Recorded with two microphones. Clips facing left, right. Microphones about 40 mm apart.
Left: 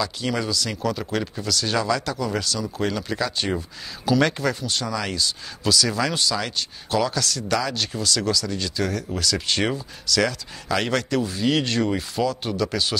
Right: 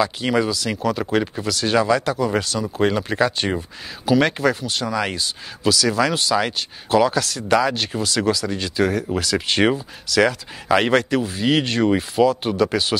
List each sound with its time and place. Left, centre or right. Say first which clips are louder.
0.0 s speech: right 6 dB; right
4.9 s speech: right 4 dB; right
5.6 s speech: right 4 dB; centre
6.3 s speech: right 6 dB; centre